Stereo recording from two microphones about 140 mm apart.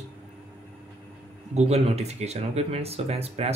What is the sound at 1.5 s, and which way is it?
Speech, 50° right (ahead or behind).